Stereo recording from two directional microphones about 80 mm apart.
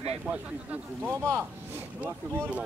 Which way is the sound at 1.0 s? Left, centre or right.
Right.